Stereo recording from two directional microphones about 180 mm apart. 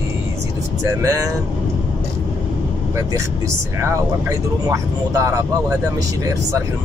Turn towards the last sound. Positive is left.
turn(degrees=-15)  # may be behind; listen again after turning